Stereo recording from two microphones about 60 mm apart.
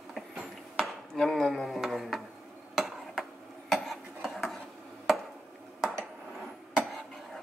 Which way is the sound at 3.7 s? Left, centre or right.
Centre.